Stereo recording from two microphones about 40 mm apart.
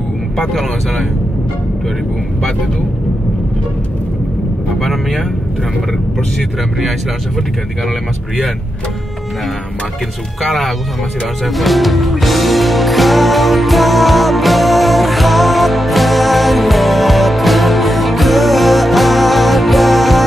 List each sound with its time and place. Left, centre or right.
0.4 s speech: centre
4.7 s speech: centre
10.4 s speech: centre
11.4 s music: centre